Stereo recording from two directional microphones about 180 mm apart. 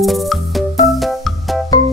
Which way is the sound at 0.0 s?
Centre (ahead or behind).